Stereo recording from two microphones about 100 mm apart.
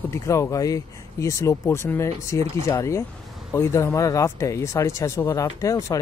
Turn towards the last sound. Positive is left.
turn(degrees=35)  # may be behind; listen again after turning